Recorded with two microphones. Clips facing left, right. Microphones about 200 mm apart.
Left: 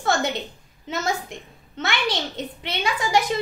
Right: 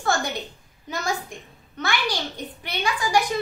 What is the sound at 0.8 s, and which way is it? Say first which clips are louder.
A child's voice: left 2 dB; 25° left (ahead or behind).